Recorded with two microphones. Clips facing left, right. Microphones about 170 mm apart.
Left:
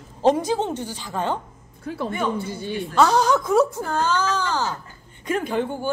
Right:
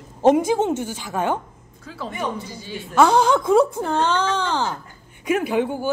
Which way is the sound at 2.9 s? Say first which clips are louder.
Right 2 dB; 10° right (ahead or behind).